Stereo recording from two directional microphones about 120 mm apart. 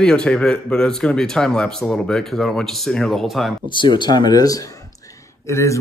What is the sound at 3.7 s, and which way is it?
Speech, 40° left (ahead or behind).